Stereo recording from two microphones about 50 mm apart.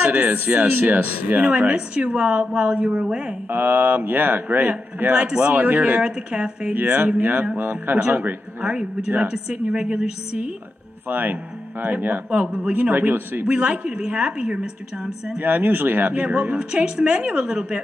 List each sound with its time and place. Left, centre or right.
0.3 s speech: right
3.4 s a man's voice: right
6.0 s speech: centre
6.7 s a man's voice: right
8.6 s speech: centre
11.1 s a man's voice: right
12.3 s speech: right
12.7 s a man's voice: right
13.5 s speech: right
15.3 s speech: right; by 17.8 s centre